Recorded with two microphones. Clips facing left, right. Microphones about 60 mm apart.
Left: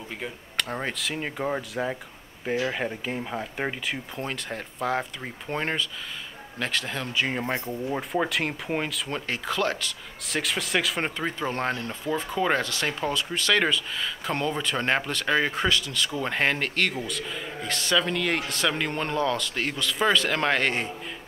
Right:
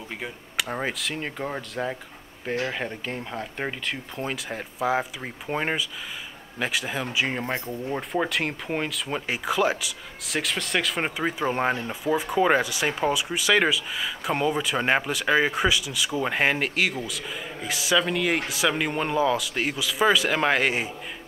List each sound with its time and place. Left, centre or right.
0.2 s speech: centre